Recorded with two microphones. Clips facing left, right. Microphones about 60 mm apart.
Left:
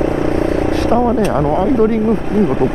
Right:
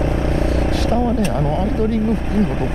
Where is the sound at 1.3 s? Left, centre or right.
Left.